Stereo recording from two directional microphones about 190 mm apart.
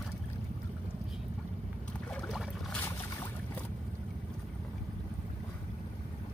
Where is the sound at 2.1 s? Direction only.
Centre (ahead or behind).